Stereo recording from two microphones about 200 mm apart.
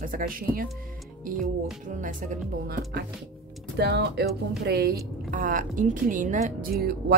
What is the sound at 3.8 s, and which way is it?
Speech, 55° right (ahead or behind).